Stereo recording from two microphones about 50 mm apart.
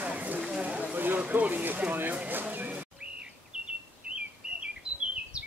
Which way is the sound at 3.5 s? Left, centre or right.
Centre.